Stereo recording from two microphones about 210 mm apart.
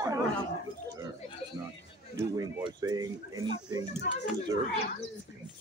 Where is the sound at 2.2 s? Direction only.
10° right (ahead or behind).